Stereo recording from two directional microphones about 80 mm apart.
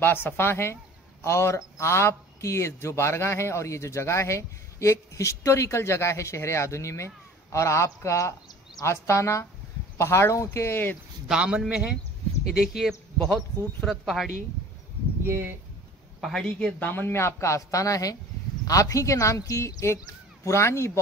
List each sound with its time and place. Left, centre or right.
0.0 s a man's voice: left
11.2 s a man's voice: centre
15.2 s speech: right
16.2 s speech: centre
16.4 s speech: centre
16.8 s a man's voice: left